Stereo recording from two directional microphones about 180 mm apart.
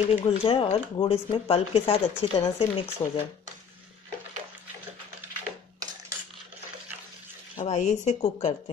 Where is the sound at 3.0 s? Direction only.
15° left (ahead or behind).